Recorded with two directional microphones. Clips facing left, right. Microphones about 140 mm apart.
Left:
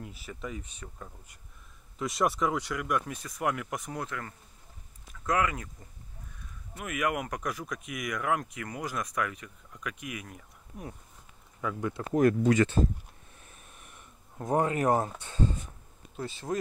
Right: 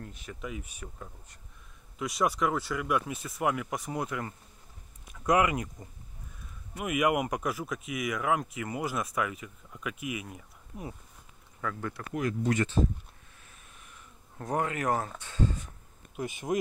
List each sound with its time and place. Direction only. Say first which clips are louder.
0.0 s speech: left 1 dB; 5° left (ahead or behind); by 5.7 s 15° right (ahead or behind)
6.8 s speech: right 4 dB; 10° right (ahead or behind)
11.6 s speech: left 3 dB; 15° left (ahead or behind)
12.2 s speech: left 6 dB; 60° left (ahead or behind)
14.4 s speech: left 4 dB; 25° left (ahead or behind)
16.2 s speech: right 2 dB; 15° right (ahead or behind)